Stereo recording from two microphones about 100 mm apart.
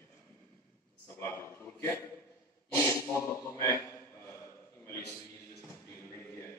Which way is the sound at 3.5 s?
25° left (ahead or behind).